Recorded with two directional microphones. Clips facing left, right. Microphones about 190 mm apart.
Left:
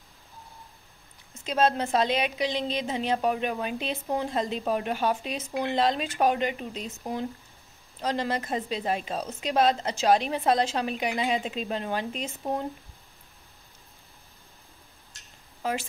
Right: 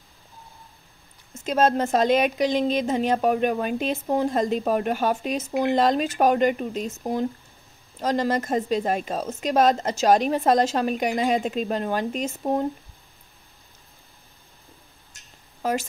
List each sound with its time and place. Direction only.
1.3 s a woman's voice: 45° right (ahead or behind)
15.6 s a woman's voice: 45° right (ahead or behind)